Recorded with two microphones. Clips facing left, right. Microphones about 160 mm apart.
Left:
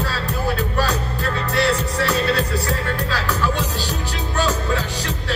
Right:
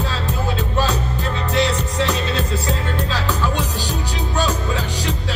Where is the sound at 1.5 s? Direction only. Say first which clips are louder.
Even; 20° right (ahead or behind).